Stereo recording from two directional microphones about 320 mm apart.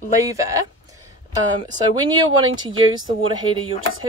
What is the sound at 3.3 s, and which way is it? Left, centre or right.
Speech, centre.